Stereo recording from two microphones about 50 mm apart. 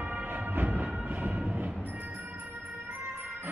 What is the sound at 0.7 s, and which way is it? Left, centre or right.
Music, right.